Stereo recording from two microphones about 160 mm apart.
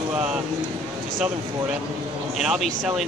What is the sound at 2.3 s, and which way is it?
Speech, centre (ahead or behind).